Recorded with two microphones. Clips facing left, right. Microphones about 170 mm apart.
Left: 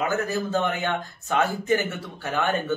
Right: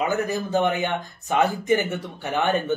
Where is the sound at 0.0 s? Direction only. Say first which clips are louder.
Right 1 dB; 15° right (ahead or behind).